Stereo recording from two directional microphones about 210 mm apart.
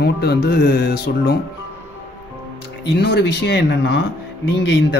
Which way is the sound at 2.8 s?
55° left (ahead or behind).